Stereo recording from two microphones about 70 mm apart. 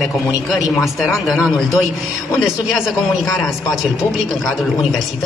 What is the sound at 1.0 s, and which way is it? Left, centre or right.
Speech, centre.